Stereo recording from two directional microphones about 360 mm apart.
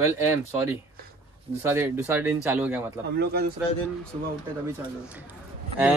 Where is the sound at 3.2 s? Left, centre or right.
Right.